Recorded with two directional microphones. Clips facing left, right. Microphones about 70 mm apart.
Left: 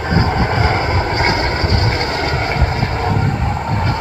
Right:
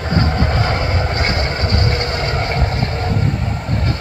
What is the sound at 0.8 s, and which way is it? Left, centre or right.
Vehicle, left.